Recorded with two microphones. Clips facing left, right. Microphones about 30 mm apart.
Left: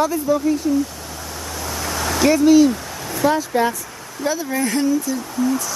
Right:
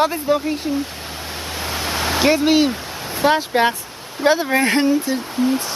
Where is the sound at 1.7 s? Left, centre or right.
Right.